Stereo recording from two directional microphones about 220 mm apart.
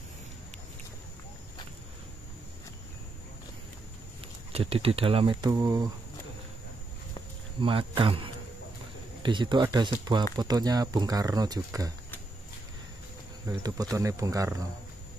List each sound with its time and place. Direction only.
4.5 s speech: 25° right (ahead or behind)
7.6 s speech: 25° right (ahead or behind)
13.5 s speech: 15° right (ahead or behind)